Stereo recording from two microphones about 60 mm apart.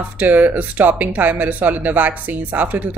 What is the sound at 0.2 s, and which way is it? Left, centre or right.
Speech, right.